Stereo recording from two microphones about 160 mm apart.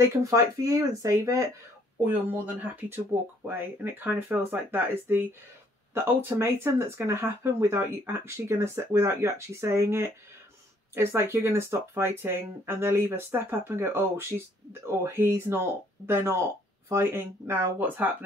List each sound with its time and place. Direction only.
0.1 s speech: 20° right (ahead or behind)